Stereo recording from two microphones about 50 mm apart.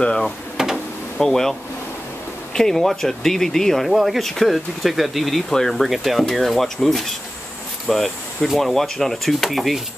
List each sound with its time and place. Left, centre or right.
0.0 s speech: centre
0.6 s a sound: centre
1.1 s speech: centre